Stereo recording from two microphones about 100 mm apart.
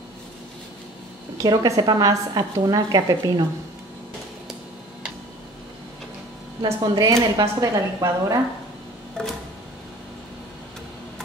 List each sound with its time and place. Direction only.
1.4 s a woman's voice: 40° right (ahead or behind)
6.6 s a woman's voice: 45° right (ahead or behind)
7.1 s a woman's voice: 30° right (ahead or behind)
9.2 s a sound: 10° left (ahead or behind)